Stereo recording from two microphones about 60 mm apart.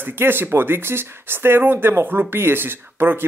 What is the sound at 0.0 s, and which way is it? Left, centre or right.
Speech, right.